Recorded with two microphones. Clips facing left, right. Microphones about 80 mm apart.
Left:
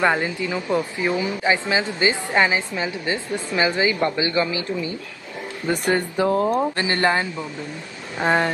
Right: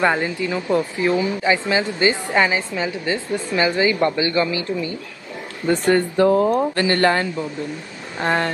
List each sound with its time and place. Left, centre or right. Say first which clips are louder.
0.0 s a woman's voice: right 1 dB; centre
6.2 s speech: right 3 dB; centre
6.8 s a woman's voice: right 3 dB; left
8.2 s speech: left 1 dB; centre